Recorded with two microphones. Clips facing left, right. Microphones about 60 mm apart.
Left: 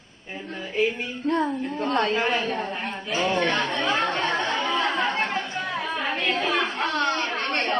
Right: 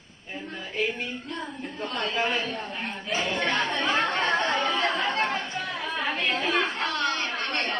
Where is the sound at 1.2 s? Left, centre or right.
Left.